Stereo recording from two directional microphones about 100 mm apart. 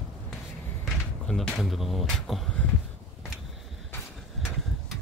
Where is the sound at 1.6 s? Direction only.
Centre (ahead or behind).